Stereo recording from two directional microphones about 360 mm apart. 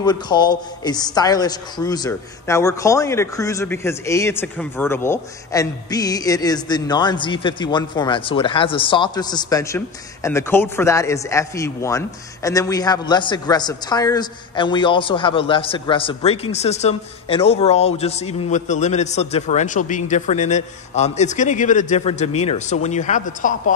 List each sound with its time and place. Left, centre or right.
0.0 s a woman's voice: centre